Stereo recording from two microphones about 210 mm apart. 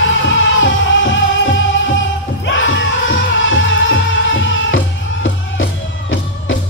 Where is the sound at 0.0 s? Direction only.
60° left (ahead or behind).